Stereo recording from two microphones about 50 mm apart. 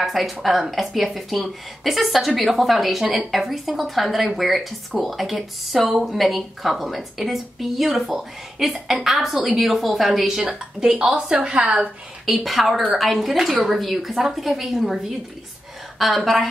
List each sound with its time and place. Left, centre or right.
0.0 s a woman's voice: centre
12.3 s a woman's voice: centre